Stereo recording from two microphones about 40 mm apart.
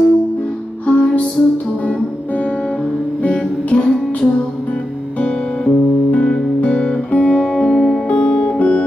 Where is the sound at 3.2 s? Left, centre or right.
Left.